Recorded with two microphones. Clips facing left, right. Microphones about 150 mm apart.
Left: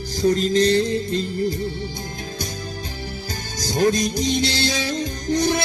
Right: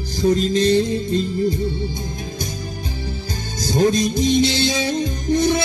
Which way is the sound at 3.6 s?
25° right (ahead or behind).